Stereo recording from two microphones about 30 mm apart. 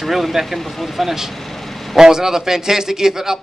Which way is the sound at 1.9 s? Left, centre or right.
Centre.